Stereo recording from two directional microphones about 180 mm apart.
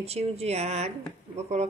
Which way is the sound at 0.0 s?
35° right (ahead or behind).